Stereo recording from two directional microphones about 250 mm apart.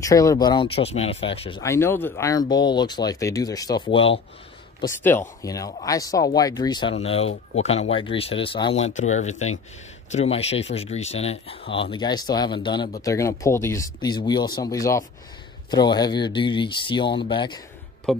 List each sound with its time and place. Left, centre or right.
0.0 s speech: centre
1.6 s speech: centre